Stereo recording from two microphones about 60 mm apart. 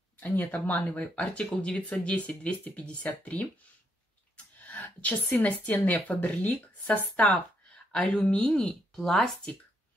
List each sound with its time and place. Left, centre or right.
0.2 s speech: left
4.6 s a sound: left
5.4 s speech: left
8.9 s speech: centre